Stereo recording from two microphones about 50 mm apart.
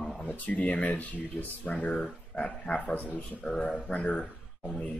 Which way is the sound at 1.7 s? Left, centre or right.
Centre.